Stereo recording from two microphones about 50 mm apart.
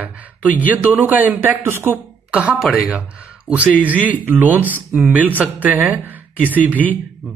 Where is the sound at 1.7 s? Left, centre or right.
Right.